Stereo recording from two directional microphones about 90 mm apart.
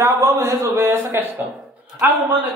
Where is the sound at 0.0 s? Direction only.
35° right (ahead or behind).